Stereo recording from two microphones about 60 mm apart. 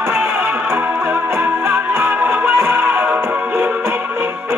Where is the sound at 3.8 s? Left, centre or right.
Right.